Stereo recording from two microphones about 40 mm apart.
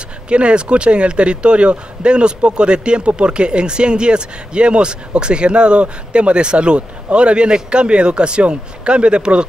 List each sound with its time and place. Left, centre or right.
0.3 s a man's voice: right